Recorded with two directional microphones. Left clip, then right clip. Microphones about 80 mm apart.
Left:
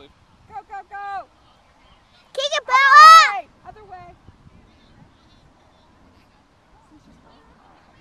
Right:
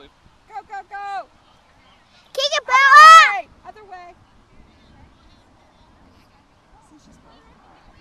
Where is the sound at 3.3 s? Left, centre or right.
Right.